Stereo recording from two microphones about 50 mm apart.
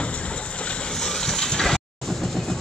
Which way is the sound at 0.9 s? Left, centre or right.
Centre.